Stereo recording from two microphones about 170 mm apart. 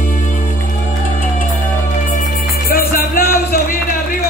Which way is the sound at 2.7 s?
60° left (ahead or behind).